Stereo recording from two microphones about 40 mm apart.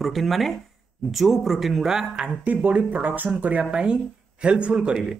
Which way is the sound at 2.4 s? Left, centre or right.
Right.